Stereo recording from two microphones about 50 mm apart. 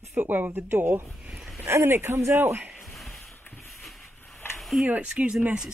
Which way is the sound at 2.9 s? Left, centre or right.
Centre.